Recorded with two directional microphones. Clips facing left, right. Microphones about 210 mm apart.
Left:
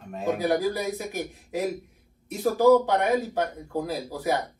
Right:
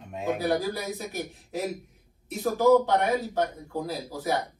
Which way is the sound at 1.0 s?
15° left (ahead or behind).